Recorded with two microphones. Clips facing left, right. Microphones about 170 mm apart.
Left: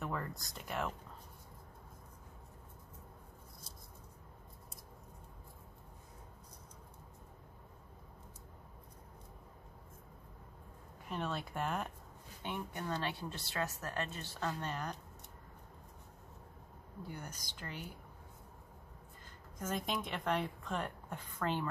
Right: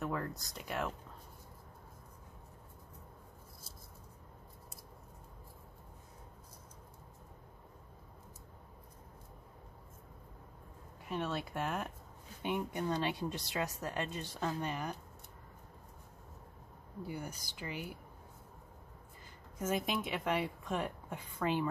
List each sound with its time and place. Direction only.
0.0 s speech: centre (ahead or behind)
11.1 s speech: 5° right (ahead or behind)
12.4 s speech: 15° right (ahead or behind)
17.0 s speech: 10° right (ahead or behind)
19.6 s speech: 5° right (ahead or behind)